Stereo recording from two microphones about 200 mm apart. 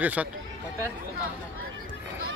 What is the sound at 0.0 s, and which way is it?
Speech, 5° right (ahead or behind).